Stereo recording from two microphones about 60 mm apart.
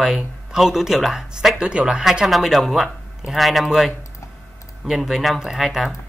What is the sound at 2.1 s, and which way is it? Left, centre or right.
Speech, centre.